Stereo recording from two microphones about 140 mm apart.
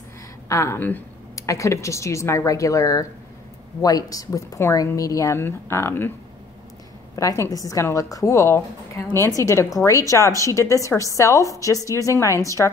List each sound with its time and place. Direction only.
0.5 s a woman's voice: 20° left (ahead or behind)
7.2 s a woman's voice: 20° left (ahead or behind)